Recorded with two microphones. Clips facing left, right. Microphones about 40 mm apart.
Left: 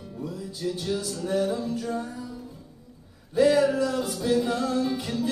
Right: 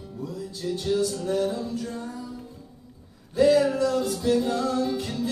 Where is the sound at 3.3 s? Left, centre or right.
Centre.